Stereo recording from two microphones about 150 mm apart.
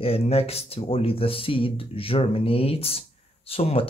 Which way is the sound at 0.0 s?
40° left (ahead or behind).